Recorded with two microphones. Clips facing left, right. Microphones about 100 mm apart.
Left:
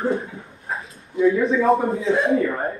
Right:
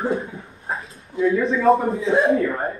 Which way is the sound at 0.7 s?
Centre (ahead or behind).